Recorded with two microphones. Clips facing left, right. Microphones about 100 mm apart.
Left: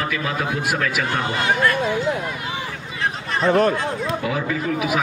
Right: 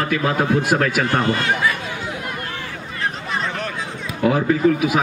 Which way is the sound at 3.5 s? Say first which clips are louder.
Left 10 dB; 40° left (ahead or behind).